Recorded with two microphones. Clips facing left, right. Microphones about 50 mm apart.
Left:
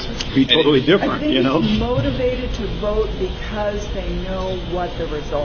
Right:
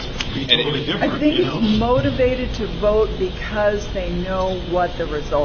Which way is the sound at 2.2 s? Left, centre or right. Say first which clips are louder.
Right 2 dB; right.